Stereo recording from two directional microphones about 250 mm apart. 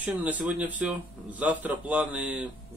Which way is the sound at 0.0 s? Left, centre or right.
Centre.